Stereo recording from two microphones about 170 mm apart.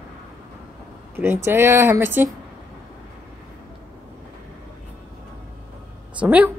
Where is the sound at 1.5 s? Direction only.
15° right (ahead or behind).